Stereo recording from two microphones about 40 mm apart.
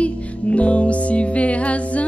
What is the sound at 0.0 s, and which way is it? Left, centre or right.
Music, left.